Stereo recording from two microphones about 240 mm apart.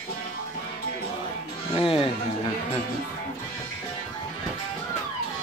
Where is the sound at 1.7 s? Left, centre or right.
Left.